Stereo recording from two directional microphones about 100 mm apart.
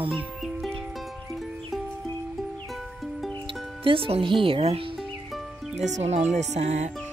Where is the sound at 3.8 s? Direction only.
65° right (ahead or behind).